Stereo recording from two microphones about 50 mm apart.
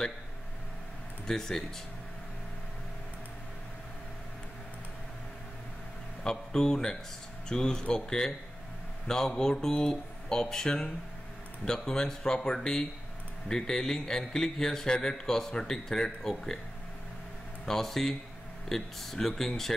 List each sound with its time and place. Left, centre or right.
1.2 s speech: centre
6.2 s a man's voice: centre
17.6 s a man's voice: centre